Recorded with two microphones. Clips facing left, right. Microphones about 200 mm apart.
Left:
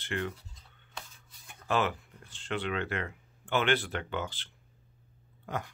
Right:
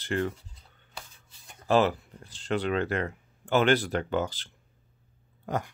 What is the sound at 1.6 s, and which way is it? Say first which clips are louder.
Speech: right 7 dB; 35° right (ahead or behind).